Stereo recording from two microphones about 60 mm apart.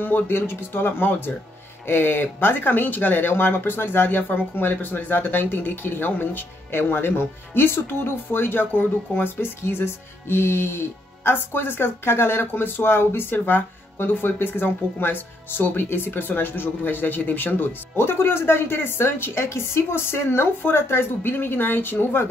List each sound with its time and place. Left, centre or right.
0.0 s speech: left